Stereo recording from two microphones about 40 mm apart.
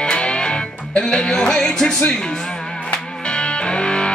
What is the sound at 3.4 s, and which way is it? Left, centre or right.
Music, left.